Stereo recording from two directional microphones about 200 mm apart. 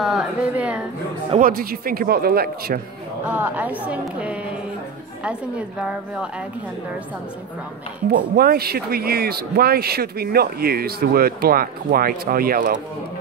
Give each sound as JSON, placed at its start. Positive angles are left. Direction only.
{"t": 0.0, "sound": "speech", "side_deg": 0}
{"t": 1.4, "sound": "speech", "side_deg": -45}
{"t": 3.3, "sound": "speech", "side_deg": -10}
{"t": 8.1, "sound": "speech", "side_deg": -50}